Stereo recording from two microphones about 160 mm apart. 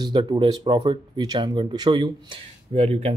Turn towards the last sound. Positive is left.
turn(degrees=-40)  # may be behind; listen again after turning